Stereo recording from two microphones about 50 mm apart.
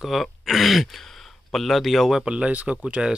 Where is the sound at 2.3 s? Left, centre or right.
Right.